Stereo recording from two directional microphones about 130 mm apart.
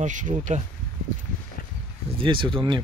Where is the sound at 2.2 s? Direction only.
40° right (ahead or behind).